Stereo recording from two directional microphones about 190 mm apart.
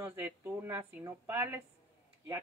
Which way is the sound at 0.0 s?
10° right (ahead or behind).